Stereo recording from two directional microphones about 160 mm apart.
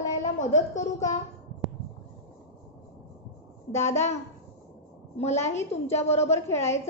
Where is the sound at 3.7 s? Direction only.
15° left (ahead or behind).